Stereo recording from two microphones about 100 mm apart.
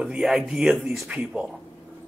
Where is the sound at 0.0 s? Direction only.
5° right (ahead or behind).